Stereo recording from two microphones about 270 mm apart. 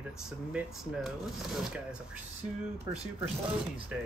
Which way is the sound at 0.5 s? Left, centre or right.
Centre.